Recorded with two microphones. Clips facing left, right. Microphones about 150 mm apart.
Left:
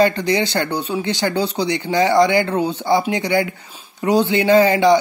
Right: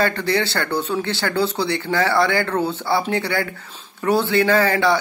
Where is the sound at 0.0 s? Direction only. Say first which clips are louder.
Left 4 dB; 15° left (ahead or behind).